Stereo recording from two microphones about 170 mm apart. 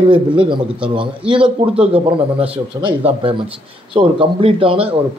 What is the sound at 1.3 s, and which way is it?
A man's voice, 30° right (ahead or behind).